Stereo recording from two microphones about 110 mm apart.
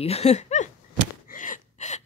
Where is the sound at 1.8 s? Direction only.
90° left.